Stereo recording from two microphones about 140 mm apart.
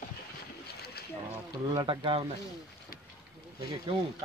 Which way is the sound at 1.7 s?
35° right (ahead or behind).